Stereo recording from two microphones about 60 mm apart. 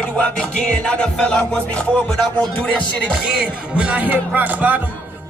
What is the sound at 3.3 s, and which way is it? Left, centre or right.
Speech, centre.